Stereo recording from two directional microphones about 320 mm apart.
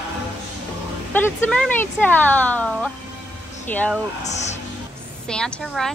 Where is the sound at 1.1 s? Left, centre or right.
Centre.